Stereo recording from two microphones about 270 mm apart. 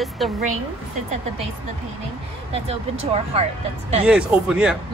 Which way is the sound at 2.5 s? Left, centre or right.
Right.